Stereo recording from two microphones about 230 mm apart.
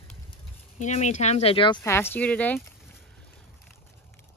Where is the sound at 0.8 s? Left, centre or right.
Left; by 2.6 s centre.